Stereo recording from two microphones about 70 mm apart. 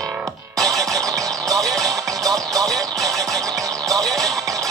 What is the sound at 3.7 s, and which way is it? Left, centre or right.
Music, right.